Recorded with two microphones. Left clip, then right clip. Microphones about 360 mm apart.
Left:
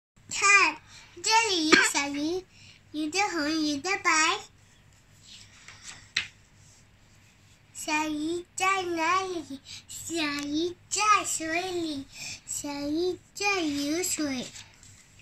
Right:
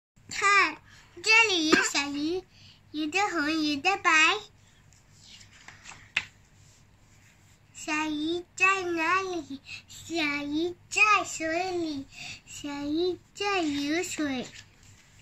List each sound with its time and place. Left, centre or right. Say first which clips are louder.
0.3 s babbling: left 2 dB; centre
1.2 s child singing: right 2 dB; centre
8.0 s child singing: even; centre